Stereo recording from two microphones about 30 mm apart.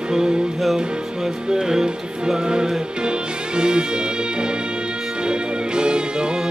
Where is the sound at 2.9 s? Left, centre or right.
Right.